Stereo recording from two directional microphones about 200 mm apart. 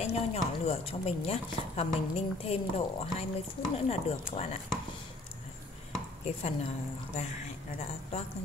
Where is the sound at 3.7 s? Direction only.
30° left (ahead or behind).